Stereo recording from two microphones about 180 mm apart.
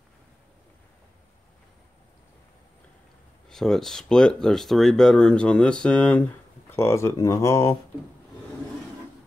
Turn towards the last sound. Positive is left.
turn(degrees=15)  # may be behind; listen again after turning